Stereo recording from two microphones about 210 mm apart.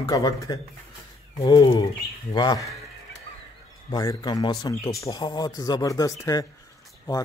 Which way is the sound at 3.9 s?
15° left (ahead or behind).